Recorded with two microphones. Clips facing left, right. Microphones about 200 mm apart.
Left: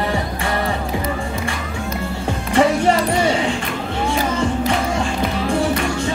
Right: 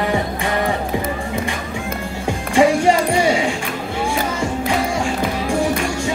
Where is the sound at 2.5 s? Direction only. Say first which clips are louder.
Right 1 dB; 10° right (ahead or behind).